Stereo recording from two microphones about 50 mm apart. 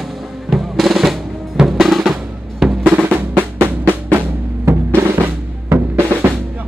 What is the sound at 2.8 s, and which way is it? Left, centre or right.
Drum, right.